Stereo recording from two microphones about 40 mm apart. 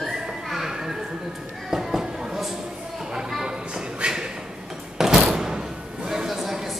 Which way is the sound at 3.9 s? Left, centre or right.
Right.